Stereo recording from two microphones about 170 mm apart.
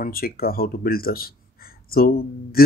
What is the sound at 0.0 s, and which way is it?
Speech, 60° left (ahead or behind).